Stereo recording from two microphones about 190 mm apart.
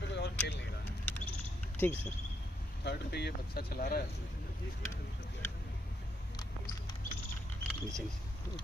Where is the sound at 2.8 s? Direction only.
60° left (ahead or behind).